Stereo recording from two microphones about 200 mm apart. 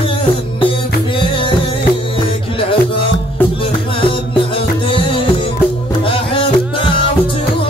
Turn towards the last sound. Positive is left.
turn(degrees=25)  # may be behind; listen again after turning